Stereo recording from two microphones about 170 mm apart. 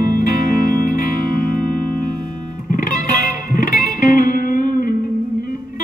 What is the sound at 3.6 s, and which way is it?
Music, 55° left (ahead or behind).